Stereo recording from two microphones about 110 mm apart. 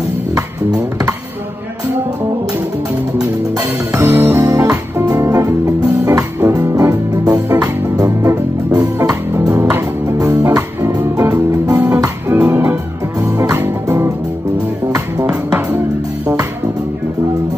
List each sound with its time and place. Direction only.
3.9 s music: 25° right (ahead or behind)
15.2 s music: 10° right (ahead or behind)